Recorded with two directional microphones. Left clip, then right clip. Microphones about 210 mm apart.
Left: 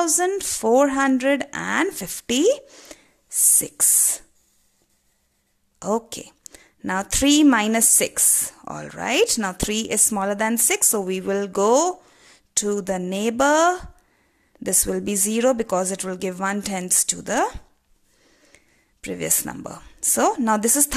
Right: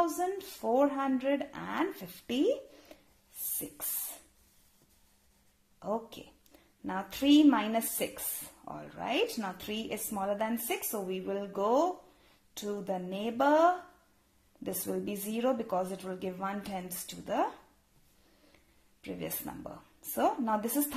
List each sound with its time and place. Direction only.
0.0 s a woman's voice: 50° left (ahead or behind)
5.8 s a woman's voice: 50° left (ahead or behind)
18.5 s speech: 45° left (ahead or behind)